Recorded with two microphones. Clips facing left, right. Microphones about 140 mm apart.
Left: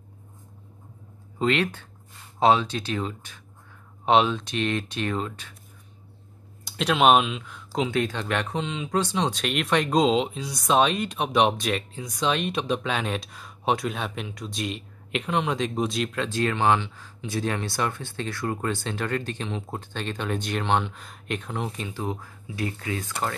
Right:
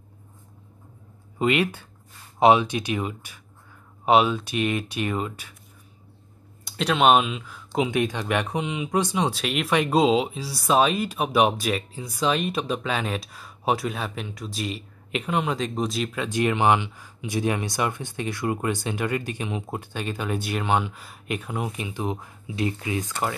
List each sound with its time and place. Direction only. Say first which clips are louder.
1.4 s speech: right 1 dB; 10° right (ahead or behind)
6.6 s speech: even; centre (ahead or behind)
7.9 s speech: right 2 dB; 15° right (ahead or behind)